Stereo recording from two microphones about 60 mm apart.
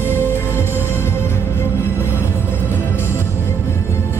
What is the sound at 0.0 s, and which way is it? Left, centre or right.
Music, left.